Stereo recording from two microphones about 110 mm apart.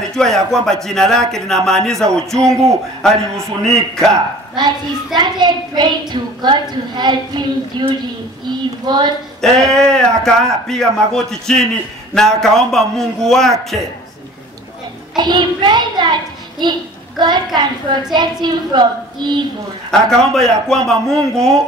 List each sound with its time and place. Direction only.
0.1 s speech: 5° left (ahead or behind)
4.6 s a child's voice: 40° right (ahead or behind)
9.4 s speech: 5° left (ahead or behind)
15.1 s a child's voice: 45° right (ahead or behind)
18.1 s a child's voice: 40° right (ahead or behind)
19.9 s speech: 5° left (ahead or behind)